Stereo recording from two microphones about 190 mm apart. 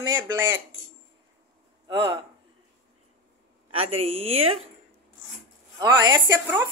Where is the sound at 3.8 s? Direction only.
30° right (ahead or behind).